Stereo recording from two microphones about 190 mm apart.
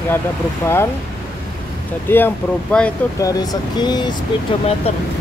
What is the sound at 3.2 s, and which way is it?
Speech, 20° left (ahead or behind).